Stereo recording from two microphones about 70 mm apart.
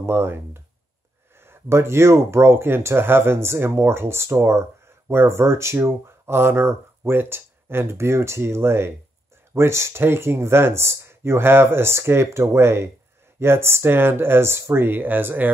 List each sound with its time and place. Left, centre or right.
0.0 s speech: right